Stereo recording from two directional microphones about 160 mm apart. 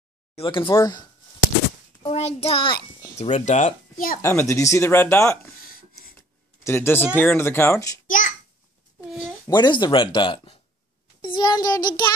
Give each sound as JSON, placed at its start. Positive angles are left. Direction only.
{"t": 0.4, "sound": "speech", "side_deg": 30}
{"t": 2.0, "sound": "child singing", "side_deg": 40}
{"t": 3.2, "sound": "speech", "side_deg": 45}
{"t": 4.2, "sound": "speech", "side_deg": 15}
{"t": 5.6, "sound": "a sound", "side_deg": 65}
{"t": 6.1, "sound": "a sound", "side_deg": 15}
{"t": 7.2, "sound": "speech", "side_deg": 15}
{"t": 9.5, "sound": "speech", "side_deg": 25}